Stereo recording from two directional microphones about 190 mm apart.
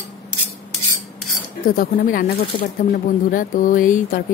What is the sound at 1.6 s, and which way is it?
Speech, 45° left (ahead or behind).